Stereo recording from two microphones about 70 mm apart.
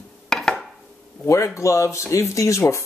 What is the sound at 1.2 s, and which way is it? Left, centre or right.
Speech, left.